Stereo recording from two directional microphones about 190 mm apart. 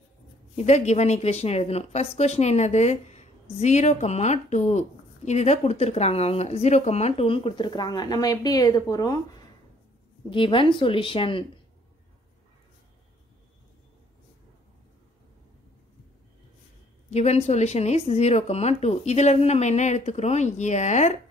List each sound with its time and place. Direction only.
0.7 s a woman's voice: 35° left (ahead or behind); by 9.2 s 20° left (ahead or behind)
10.3 s speech: 25° left (ahead or behind)
17.1 s a woman's voice: 35° left (ahead or behind)